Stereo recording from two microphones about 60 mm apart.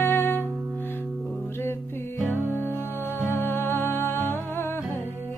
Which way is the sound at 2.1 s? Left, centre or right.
Left.